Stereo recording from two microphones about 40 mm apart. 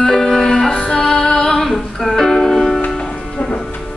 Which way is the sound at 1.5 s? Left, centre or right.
Centre.